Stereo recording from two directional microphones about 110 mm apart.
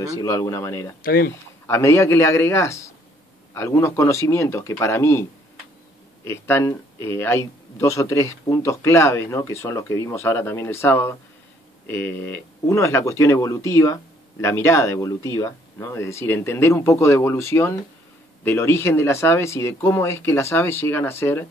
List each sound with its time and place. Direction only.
0.0 s speech: 30° left (ahead or behind)
6.2 s speech: 20° left (ahead or behind)